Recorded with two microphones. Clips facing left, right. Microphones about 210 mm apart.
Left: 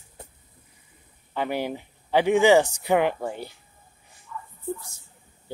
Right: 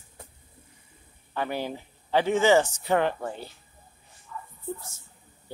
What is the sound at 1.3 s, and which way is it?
Speech, 15° left (ahead or behind).